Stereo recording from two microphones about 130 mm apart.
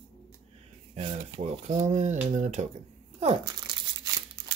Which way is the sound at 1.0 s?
50° right (ahead or behind).